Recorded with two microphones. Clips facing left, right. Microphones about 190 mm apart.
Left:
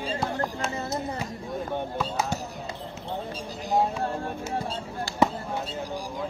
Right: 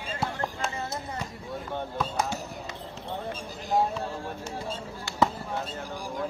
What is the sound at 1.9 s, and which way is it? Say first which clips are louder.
Fireworks: left 1 dB; 5° left (ahead or behind).